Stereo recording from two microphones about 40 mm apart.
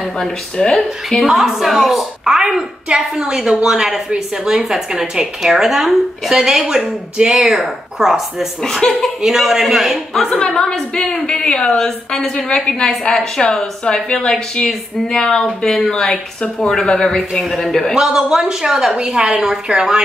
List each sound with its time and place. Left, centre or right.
0.0 s speech: centre
1.2 s speech: centre
2.3 s a woman's voice: centre
7.3 s speech: centre
8.8 s a woman's voice: left
9.2 s speech: centre
10.3 s a woman's voice: centre
12.4 s a woman's voice: left
13.6 s a woman's voice: left
15.6 s speech: centre
17.9 s speech: centre